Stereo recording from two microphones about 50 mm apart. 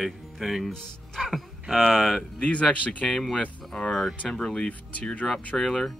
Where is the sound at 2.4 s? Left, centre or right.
Left.